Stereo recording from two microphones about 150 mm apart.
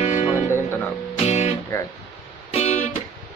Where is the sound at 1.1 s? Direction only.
45° left (ahead or behind).